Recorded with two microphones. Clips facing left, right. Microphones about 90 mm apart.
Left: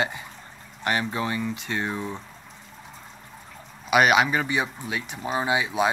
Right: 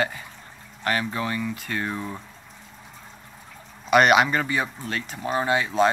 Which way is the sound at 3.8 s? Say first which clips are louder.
Right 2 dB; 5° left (ahead or behind).